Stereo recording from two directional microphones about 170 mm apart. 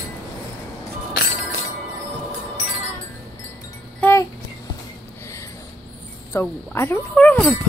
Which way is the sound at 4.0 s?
15° left (ahead or behind).